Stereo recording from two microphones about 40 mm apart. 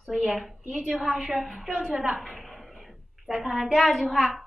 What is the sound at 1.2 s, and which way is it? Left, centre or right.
Speech, centre.